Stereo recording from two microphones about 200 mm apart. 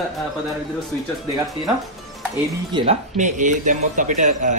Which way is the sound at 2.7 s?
35° right (ahead or behind).